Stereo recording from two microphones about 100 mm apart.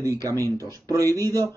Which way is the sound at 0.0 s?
30° left (ahead or behind).